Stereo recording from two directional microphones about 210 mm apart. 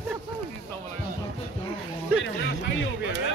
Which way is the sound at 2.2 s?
55° left (ahead or behind).